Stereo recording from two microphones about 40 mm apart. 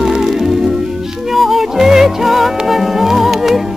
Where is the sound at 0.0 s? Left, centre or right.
Centre.